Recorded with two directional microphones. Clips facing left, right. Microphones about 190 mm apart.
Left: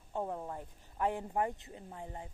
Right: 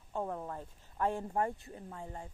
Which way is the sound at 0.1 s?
20° left (ahead or behind).